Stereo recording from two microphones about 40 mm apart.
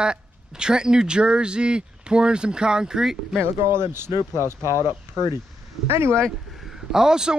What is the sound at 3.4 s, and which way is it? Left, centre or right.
Speech, right.